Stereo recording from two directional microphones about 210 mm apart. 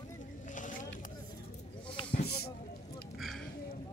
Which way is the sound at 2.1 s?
50° left (ahead or behind).